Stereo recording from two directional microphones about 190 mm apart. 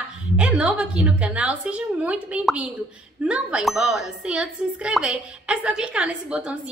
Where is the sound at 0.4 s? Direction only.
5° right (ahead or behind).